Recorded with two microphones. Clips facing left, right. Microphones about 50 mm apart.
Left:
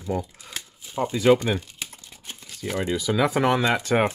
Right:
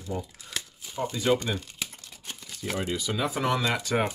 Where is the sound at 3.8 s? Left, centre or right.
Left.